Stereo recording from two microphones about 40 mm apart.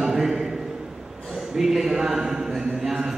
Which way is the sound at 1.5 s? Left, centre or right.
Centre.